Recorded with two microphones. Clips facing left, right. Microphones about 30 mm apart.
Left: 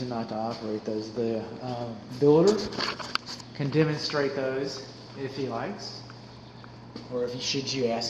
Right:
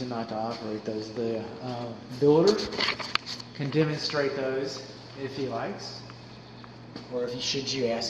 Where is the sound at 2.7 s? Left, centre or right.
Right.